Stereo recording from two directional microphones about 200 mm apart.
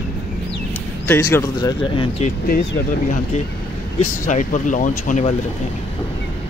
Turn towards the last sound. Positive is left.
turn(degrees=40)  # may be behind; listen again after turning